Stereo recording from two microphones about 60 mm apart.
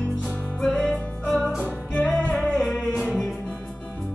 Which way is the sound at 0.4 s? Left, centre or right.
Centre.